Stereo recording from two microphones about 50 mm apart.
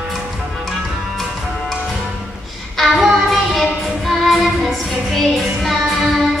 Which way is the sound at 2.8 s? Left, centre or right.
Centre.